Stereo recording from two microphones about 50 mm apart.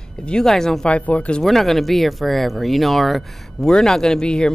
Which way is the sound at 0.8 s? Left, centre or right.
Left.